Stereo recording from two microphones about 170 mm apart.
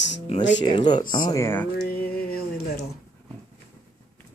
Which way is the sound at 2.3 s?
65° left (ahead or behind).